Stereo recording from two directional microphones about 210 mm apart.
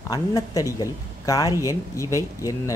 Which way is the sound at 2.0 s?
15° right (ahead or behind).